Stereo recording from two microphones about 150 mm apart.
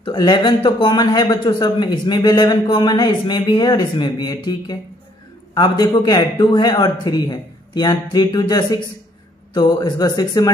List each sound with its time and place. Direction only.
0.0 s speech: 30° left (ahead or behind)
5.5 s a man's voice: 30° left (ahead or behind)